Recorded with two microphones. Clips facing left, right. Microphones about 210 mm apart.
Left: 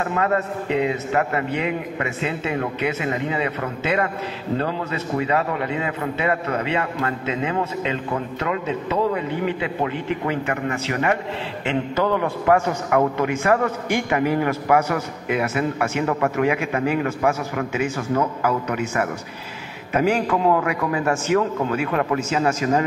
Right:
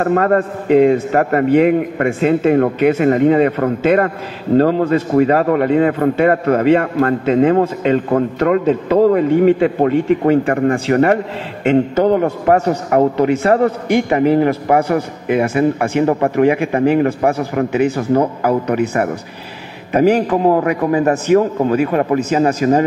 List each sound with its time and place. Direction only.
0.0 s a man's voice: 50° right (ahead or behind)